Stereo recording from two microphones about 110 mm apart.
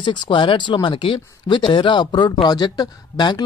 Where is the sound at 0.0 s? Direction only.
45° left (ahead or behind).